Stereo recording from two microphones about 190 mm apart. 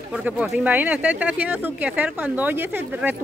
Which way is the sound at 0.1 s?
5° right (ahead or behind).